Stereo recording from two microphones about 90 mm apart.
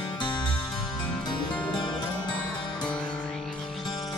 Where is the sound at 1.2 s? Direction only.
60° left (ahead or behind).